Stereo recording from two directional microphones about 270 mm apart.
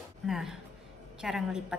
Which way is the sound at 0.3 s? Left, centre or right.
Centre.